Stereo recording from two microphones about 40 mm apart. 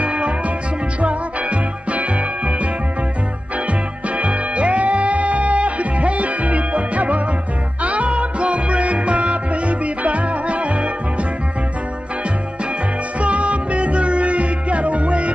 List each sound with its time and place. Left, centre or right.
0.0 s music: right
4.2 s music: right
13.2 s music: right